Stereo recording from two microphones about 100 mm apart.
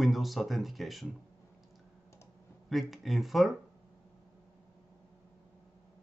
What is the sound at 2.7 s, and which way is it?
Speech, centre (ahead or behind).